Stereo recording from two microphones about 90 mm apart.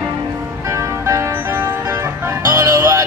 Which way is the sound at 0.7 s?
35° right (ahead or behind).